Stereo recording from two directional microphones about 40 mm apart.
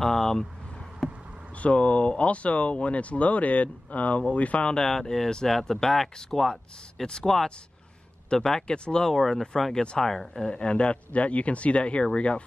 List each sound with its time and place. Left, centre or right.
0.0 s speech: centre
1.0 s insect: centre
1.6 s speech: left
4.6 s speech: left
4.9 s speech: centre
10.5 s speech: left